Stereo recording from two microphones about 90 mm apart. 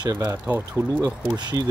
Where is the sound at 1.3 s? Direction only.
55° right (ahead or behind).